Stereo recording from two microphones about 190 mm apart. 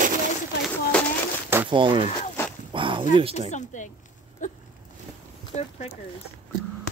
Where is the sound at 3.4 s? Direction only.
40° left (ahead or behind).